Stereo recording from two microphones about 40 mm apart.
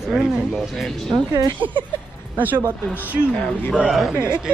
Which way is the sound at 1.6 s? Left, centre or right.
Right.